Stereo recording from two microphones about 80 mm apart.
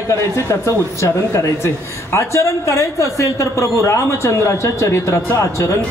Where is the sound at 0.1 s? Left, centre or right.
Left.